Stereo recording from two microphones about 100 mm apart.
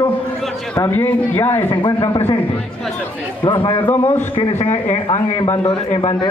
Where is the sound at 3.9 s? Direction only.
25° left (ahead or behind).